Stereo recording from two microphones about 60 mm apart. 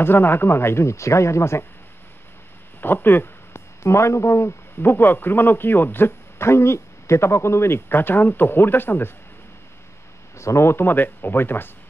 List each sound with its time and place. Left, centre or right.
0.0 s speech: left
2.8 s a sound: left
3.8 s speech: left
10.3 s speech: left